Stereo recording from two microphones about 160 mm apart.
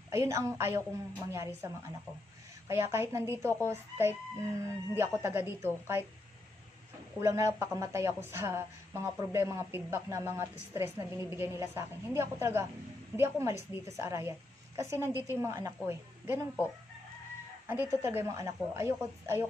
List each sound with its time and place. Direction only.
0.1 s a woman's voice: 20° right (ahead or behind)
2.7 s a woman's voice: 15° right (ahead or behind)
7.2 s a woman's voice: 15° right (ahead or behind)
17.6 s a woman's voice: 15° right (ahead or behind)